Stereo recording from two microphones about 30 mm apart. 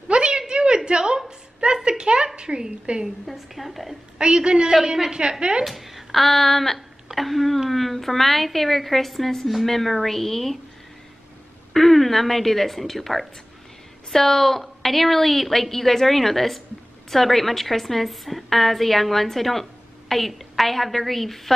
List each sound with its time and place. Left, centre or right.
0.1 s a sound: right
3.3 s a woman's voice: centre
4.2 s a woman's voice: right
5.7 s a sound: centre
6.2 s a woman's voice: centre
11.7 s a woman's voice: centre